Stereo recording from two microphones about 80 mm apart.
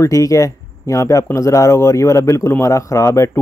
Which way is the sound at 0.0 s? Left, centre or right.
Left.